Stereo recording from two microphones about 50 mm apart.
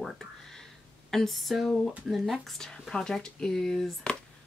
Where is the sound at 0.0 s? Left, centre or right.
Centre.